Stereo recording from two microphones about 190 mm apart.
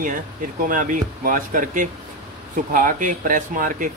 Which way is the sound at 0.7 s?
45° right (ahead or behind).